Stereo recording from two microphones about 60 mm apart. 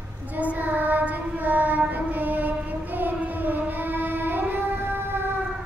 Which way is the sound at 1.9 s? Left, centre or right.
Right.